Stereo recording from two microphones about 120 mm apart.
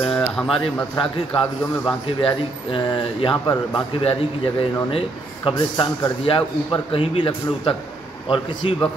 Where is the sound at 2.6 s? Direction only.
45° left (ahead or behind).